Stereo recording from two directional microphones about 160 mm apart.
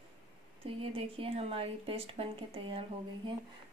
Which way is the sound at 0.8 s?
35° right (ahead or behind).